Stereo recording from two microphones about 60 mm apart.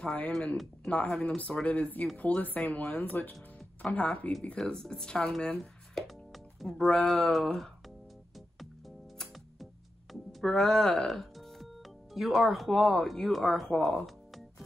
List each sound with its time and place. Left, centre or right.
0.0 s speech: left
4.6 s speech: centre
5.6 s music: centre
6.9 s speech: centre
8.4 s music: centre
10.4 s speech: centre
13.8 s music: centre